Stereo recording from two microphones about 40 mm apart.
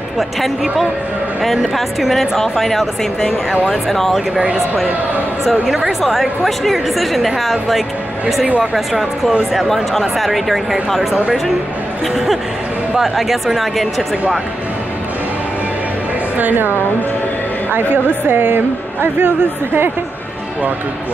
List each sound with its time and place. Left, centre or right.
0.2 s speech: centre
5.4 s speech: centre
8.7 s speech: centre
12.9 s speech: centre
16.3 s a woman's voice: right